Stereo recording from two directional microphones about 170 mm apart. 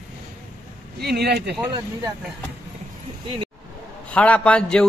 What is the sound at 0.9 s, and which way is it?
Speech, 70° right (ahead or behind).